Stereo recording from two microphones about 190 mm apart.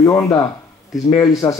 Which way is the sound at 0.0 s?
15° left (ahead or behind).